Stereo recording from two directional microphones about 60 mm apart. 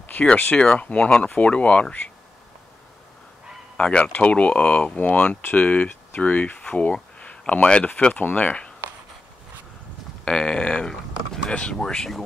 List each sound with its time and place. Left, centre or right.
0.0 s a sound: left
0.3 s speech: left
3.7 s speech: centre
10.2 s speech: centre